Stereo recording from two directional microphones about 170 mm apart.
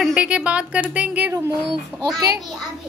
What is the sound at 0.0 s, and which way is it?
Speech, 5° right (ahead or behind).